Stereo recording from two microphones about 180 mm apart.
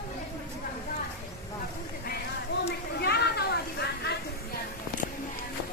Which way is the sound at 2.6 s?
70° left (ahead or behind).